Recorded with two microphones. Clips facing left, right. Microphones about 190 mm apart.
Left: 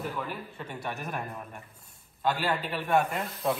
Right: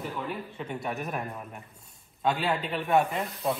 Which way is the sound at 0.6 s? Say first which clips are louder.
Right 4 dB; centre (ahead or behind).